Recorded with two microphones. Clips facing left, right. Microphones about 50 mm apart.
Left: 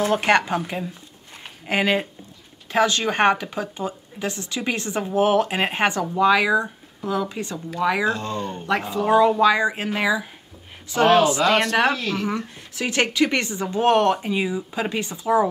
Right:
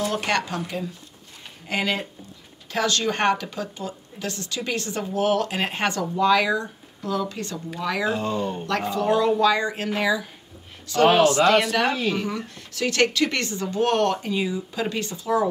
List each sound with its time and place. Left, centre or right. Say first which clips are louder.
0.0 s speech: left 5 dB; left
8.0 s speech: even; centre
8.8 s speech: left 4 dB; centre
11.4 s speech: left 1 dB; centre
12.7 s speech: even; centre